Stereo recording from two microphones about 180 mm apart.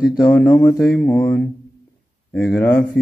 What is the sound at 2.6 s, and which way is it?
Mantra, 10° left (ahead or behind).